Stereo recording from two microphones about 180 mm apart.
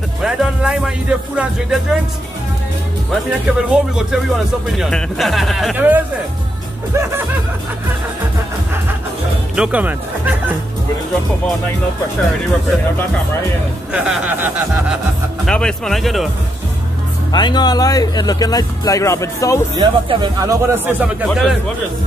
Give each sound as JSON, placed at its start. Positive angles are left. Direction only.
{"t": 0.2, "sound": "speech", "side_deg": -5}
{"t": 3.5, "sound": "speech", "side_deg": -5}
{"t": 5.8, "sound": "speech", "side_deg": -10}
{"t": 9.6, "sound": "speech", "side_deg": -5}
{"t": 13.9, "sound": "speech", "side_deg": -5}
{"t": 15.4, "sound": "speech", "side_deg": 5}
{"t": 17.3, "sound": "speech", "side_deg": 25}
{"t": 19.8, "sound": "speech", "side_deg": -25}